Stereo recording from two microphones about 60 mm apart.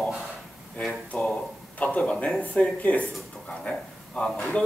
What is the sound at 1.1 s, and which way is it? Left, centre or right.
Speech, left.